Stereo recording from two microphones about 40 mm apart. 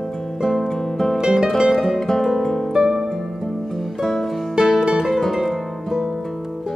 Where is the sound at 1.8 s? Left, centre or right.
Centre.